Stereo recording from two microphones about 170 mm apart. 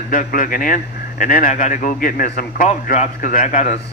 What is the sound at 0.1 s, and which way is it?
Speech, 50° left (ahead or behind).